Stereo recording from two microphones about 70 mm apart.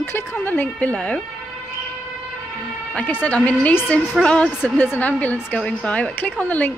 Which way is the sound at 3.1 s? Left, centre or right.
Left.